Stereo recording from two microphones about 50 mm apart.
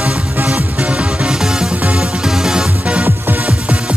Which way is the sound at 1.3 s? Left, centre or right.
Centre.